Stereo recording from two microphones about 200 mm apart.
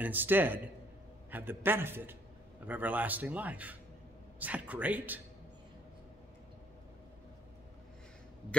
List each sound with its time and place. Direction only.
0.0 s speech: 10° right (ahead or behind)